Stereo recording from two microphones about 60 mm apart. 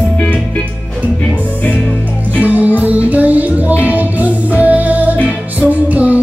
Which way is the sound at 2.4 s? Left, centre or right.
Right.